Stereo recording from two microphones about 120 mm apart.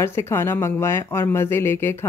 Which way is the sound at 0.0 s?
20° left (ahead or behind).